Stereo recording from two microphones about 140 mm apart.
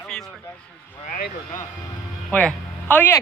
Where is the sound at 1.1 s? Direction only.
70° left (ahead or behind).